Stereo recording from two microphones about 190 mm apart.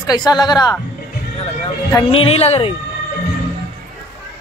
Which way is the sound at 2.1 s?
30° left (ahead or behind).